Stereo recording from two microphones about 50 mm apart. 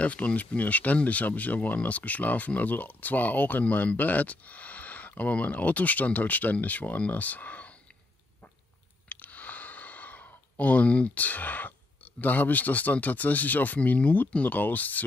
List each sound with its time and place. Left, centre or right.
0.0 s speech: left
9.1 s speech: left